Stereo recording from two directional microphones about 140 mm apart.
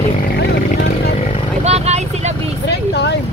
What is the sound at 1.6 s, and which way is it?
Speech, 50° right (ahead or behind).